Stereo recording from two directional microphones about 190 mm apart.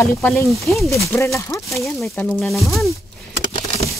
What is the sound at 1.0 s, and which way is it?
Speech, 15° left (ahead or behind).